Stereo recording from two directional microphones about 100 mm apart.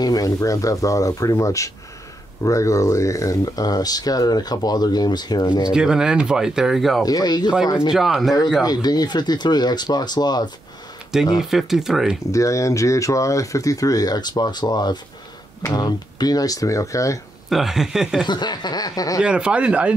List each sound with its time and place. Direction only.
0.0 s speech: 40° left (ahead or behind)
5.7 s speech: 5° right (ahead or behind)
7.1 s speech: 40° left (ahead or behind)
7.9 s speech: 5° right (ahead or behind)
8.6 s speech: 40° left (ahead or behind)
11.3 s speech: 5° right (ahead or behind)
12.3 s speech: 35° left (ahead or behind)
17.5 s speech: 5° right (ahead or behind)
18.2 s speech: 45° left (ahead or behind)
19.2 s speech: 10° right (ahead or behind)